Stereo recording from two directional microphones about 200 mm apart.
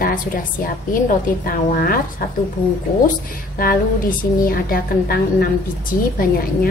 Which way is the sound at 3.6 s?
45° left (ahead or behind).